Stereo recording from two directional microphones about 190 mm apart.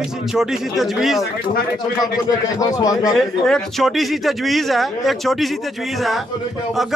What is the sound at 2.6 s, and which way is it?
Speech, 20° left (ahead or behind).